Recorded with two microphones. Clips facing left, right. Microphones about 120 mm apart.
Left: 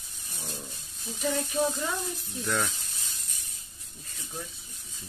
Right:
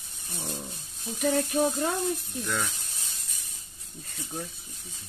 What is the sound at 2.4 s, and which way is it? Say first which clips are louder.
Speech: left 3 dB; centre (ahead or behind).